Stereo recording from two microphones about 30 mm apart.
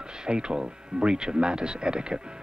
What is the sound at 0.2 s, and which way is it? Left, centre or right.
Speech, right.